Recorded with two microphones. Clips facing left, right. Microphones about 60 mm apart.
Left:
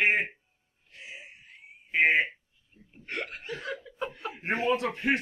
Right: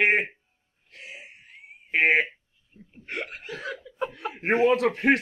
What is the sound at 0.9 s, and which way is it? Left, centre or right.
Music, right.